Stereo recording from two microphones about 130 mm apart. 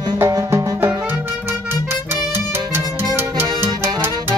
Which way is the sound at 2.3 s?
15° right (ahead or behind).